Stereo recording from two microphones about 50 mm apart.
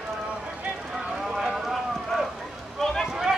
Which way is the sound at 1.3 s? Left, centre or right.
Centre.